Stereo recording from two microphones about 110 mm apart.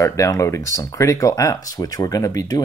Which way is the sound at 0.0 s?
30° left (ahead or behind).